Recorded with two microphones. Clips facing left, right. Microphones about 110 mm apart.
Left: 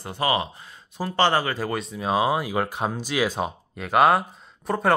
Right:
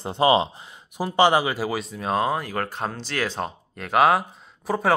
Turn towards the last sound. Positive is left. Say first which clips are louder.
# even
turn(degrees=0)  # may be behind; listen again after turning